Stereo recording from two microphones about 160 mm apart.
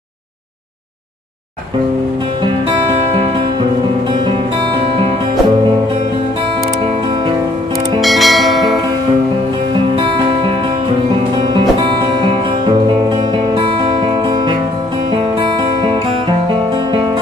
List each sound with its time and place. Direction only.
8.0 s bell: centre (ahead or behind)
9.9 s music: 35° right (ahead or behind)
12.2 s music: 30° right (ahead or behind)